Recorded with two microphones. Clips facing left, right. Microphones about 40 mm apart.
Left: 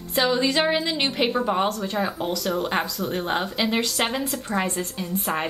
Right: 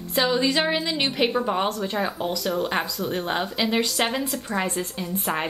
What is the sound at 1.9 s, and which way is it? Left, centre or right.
A woman's voice, centre.